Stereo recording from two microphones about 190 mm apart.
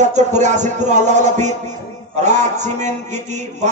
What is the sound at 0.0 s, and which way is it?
A man's voice, 40° right (ahead or behind).